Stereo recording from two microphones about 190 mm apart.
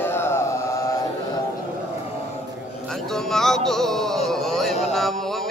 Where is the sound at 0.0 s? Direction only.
10° left (ahead or behind).